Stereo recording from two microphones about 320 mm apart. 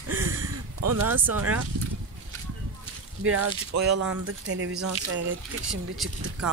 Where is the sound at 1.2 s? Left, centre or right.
Right.